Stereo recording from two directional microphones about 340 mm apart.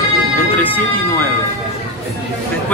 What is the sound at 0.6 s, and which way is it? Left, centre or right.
Speech, centre.